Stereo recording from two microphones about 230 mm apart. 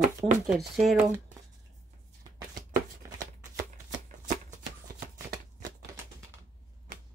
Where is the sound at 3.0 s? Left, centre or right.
Centre.